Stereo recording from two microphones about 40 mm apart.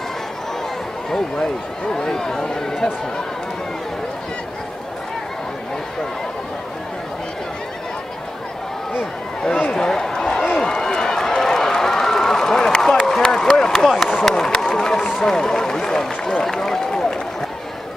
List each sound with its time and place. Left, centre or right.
1.1 s speech: centre
9.7 s speech: centre
10.1 s a sound: centre
10.6 s run: centre
13.2 s a sound: centre
13.8 s speech: centre
14.2 s speech: centre